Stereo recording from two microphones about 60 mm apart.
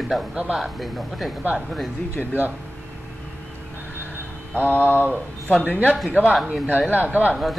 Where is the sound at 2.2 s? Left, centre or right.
Centre.